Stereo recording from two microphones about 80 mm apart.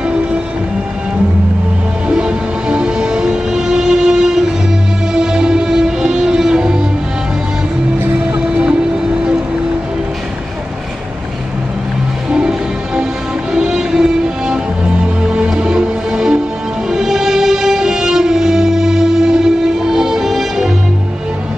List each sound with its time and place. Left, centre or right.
2.0 s music: centre
8.0 s music: centre
12.3 s music: centre